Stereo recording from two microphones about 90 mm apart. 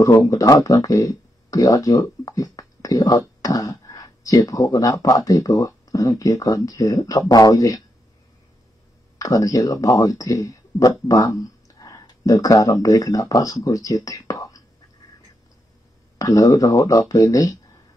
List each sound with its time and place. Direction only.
0.0 s speech: 40° left (ahead or behind)
9.2 s speech: 40° left (ahead or behind)
16.2 s speech: 40° left (ahead or behind)